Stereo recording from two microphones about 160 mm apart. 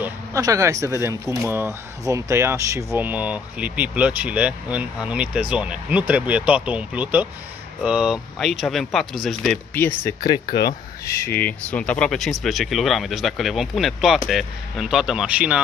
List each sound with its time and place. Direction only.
0.0 s speech: 20° right (ahead or behind); by 9.6 s centre (ahead or behind)
9.8 s speech: 10° left (ahead or behind)
10.2 s speech: 25° left (ahead or behind)
11.1 s speech: 15° left (ahead or behind); by 15.6 s 10° right (ahead or behind)